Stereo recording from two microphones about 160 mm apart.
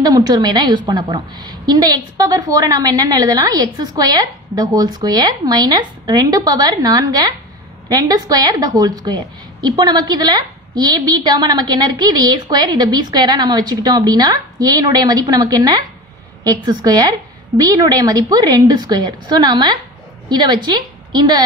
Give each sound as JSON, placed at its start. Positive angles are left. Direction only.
{"t": 0.0, "sound": "a woman's voice", "side_deg": -25}